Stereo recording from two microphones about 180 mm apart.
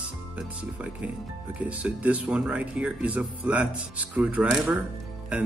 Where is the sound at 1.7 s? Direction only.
5° right (ahead or behind).